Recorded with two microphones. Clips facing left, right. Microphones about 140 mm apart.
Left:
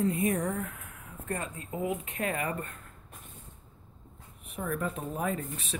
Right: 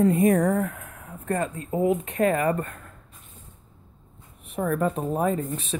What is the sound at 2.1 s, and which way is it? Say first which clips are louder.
Speech: right 10 dB; 50° right (ahead or behind).